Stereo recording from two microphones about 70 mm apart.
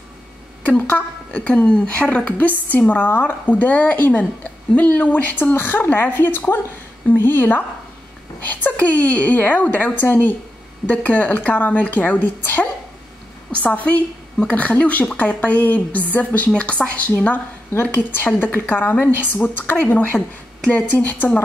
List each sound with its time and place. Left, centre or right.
0.7 s a woman's voice: left
8.6 s a woman's voice: left
13.5 s a woman's voice: centre